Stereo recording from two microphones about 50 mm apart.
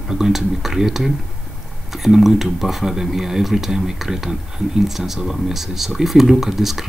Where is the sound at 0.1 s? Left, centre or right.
Centre.